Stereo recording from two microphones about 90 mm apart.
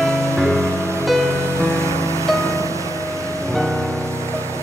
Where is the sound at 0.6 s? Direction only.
30° right (ahead or behind).